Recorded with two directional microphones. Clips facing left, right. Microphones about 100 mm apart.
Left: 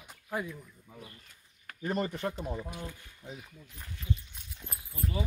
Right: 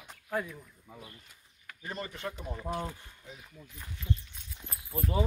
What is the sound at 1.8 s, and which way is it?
Speech, 45° left (ahead or behind).